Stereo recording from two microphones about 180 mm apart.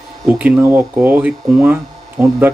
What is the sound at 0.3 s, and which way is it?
Speech, 10° right (ahead or behind).